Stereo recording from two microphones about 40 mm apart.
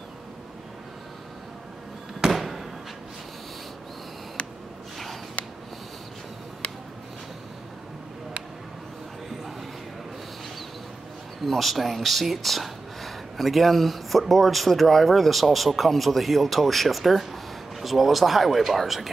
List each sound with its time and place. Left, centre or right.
2.2 s fireworks: centre
4.4 s a sound: left
11.4 s speech: centre